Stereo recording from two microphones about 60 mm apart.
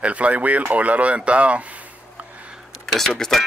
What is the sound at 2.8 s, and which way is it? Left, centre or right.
Speech, centre.